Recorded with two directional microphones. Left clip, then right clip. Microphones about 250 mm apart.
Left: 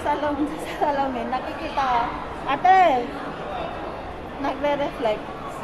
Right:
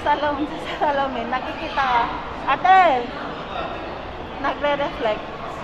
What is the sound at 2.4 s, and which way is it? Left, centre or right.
Speech, centre.